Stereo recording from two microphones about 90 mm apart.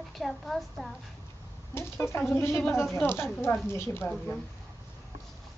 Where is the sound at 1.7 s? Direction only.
30° left (ahead or behind).